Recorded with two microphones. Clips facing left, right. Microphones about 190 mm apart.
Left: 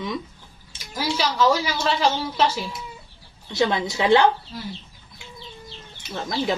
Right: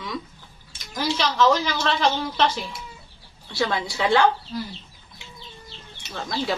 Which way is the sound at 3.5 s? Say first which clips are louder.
Left 3 dB; 20° left (ahead or behind).